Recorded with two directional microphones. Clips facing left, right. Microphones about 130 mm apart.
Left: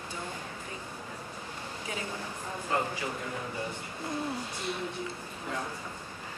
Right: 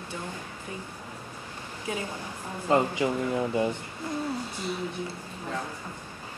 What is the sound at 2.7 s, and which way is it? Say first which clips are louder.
Speech: right 8 dB; 20° right (ahead or behind).